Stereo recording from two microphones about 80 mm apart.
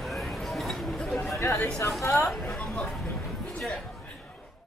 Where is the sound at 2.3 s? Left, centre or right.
Centre.